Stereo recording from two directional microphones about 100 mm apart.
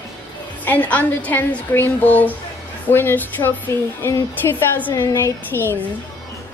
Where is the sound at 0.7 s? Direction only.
15° left (ahead or behind).